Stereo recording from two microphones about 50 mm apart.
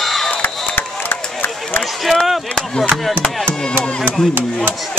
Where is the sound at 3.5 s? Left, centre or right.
Right.